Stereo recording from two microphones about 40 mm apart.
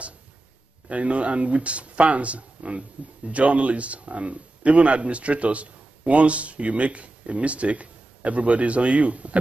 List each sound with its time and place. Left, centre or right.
0.8 s a man's voice: right